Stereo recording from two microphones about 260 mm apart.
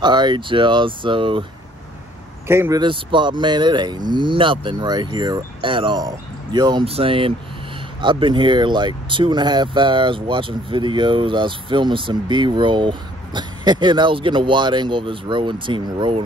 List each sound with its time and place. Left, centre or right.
0.0 s speech: centre
2.4 s speech: centre